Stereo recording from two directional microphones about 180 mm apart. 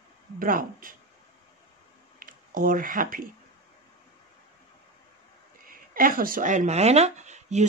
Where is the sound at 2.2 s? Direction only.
50° right (ahead or behind).